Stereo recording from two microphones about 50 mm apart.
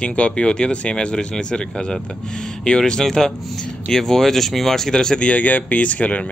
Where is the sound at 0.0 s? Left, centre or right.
Left.